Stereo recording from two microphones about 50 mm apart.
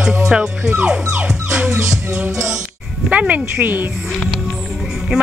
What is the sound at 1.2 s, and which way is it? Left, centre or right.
Music, centre.